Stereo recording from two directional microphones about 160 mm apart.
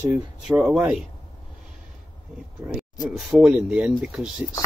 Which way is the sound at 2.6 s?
15° right (ahead or behind).